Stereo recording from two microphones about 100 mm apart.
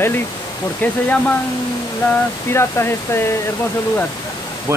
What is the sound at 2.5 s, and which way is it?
Speech, 25° left (ahead or behind).